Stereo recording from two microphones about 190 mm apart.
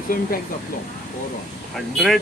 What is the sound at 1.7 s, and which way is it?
Speech, centre (ahead or behind).